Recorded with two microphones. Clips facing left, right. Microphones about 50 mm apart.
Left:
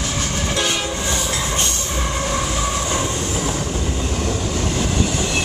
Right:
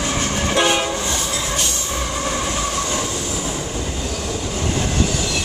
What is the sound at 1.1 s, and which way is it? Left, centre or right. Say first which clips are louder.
Train: left 1 dB; left.